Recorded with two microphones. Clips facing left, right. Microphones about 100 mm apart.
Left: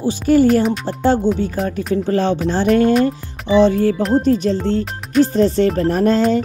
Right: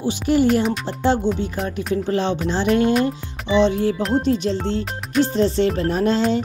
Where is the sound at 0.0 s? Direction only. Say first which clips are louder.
Left 5 dB; 40° left (ahead or behind).